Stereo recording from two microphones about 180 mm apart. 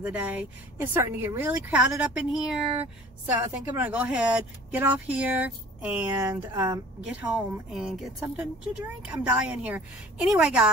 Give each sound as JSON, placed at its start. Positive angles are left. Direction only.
{"t": 0.0, "sound": "speech", "side_deg": -10}